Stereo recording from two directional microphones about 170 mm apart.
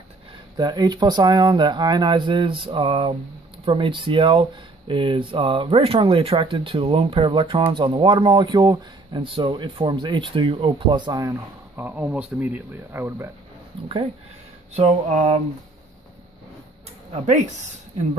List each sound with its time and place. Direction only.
0.6 s speech: 25° right (ahead or behind)
13.7 s speech: 30° right (ahead or behind)
14.7 s a sound: 40° right (ahead or behind)